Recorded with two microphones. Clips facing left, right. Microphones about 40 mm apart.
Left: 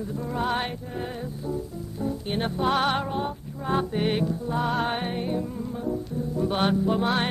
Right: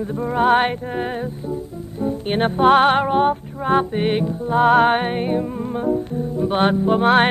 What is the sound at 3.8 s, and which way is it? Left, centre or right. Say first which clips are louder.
Speech: right 5 dB; right.